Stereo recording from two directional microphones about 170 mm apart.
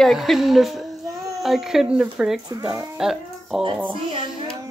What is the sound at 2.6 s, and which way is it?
Speech, 15° right (ahead or behind).